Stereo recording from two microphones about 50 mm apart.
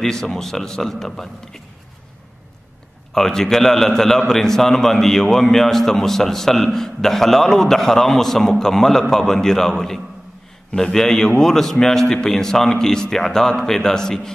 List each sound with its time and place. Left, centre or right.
0.0 s a man's voice: centre
3.2 s a man's voice: centre